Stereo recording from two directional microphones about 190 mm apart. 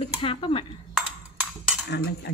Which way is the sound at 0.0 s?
30° left (ahead or behind).